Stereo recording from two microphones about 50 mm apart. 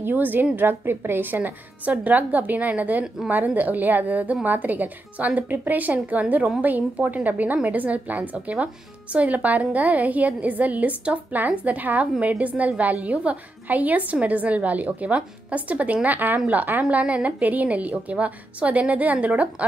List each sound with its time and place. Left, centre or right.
0.0 s a woman's voice: right
0.6 s a woman's voice: right